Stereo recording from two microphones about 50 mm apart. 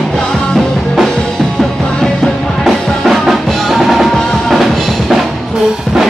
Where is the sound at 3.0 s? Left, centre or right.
Centre.